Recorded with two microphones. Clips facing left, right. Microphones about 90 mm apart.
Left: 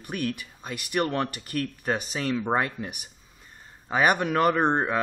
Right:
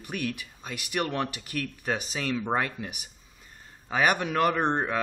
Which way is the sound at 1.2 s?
40° left (ahead or behind).